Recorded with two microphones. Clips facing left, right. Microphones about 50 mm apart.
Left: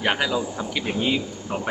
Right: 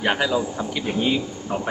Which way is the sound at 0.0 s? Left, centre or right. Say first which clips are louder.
Right 2 dB; centre.